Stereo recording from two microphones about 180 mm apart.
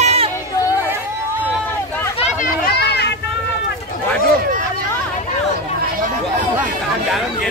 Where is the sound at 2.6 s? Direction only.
65° left (ahead or behind).